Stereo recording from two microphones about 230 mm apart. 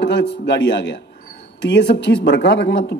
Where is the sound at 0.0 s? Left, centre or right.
Left.